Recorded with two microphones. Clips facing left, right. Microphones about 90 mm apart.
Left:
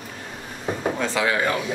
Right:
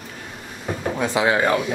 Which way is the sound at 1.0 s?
20° right (ahead or behind).